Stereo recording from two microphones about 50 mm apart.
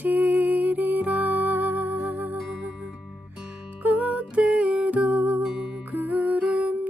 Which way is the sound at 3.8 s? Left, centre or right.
Right.